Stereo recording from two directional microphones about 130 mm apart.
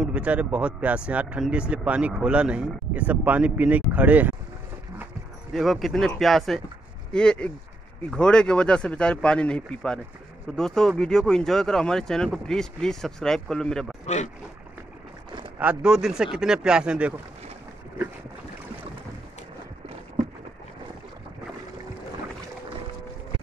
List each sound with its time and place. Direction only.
0.0 s speech: 10° right (ahead or behind)
5.5 s speech: centre (ahead or behind)
14.0 s speech: 65° left (ahead or behind)
15.6 s speech: 5° right (ahead or behind)